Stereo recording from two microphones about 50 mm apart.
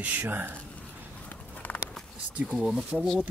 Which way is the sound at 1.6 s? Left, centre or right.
Left.